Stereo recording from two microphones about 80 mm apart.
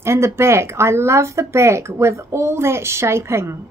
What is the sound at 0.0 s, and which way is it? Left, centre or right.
Speech, right.